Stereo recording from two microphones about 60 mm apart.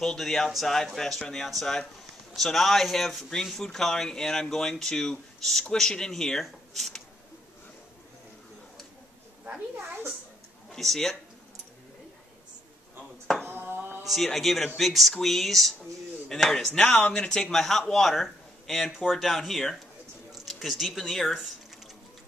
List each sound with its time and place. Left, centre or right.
0.0 s speech: centre
9.8 s a woman's voice: right
10.7 s speech: centre
13.5 s a sound: right
14.0 s speech: centre
16.8 s speech: left; by 21.4 s centre